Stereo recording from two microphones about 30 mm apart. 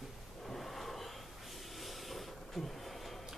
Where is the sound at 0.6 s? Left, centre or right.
Centre.